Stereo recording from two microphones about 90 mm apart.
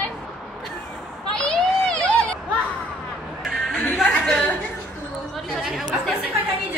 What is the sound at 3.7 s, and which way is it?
Music, 20° left (ahead or behind).